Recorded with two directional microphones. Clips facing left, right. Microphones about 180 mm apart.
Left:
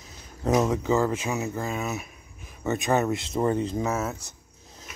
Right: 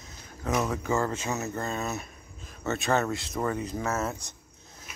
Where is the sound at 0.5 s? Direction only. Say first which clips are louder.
Left 5 dB; 20° left (ahead or behind).